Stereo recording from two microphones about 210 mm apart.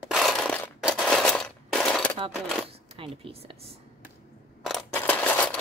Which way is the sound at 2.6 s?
25° right (ahead or behind).